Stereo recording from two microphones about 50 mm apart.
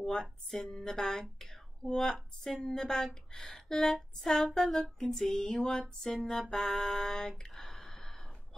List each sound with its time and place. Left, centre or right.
0.0 s speech: centre
5.0 s speech: centre
6.5 s music: centre